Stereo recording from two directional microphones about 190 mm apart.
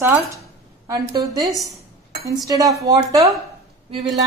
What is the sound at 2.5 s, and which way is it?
Speech, 20° right (ahead or behind).